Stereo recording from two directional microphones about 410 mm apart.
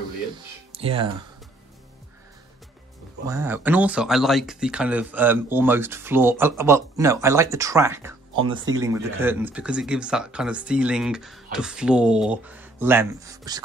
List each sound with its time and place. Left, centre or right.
0.7 s speech: centre
3.3 s speech: centre